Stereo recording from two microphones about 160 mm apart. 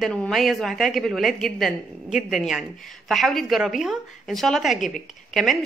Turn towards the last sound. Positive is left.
turn(degrees=0)  # may be behind; listen again after turning